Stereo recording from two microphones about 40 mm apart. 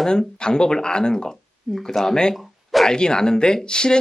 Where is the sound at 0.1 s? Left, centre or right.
Centre.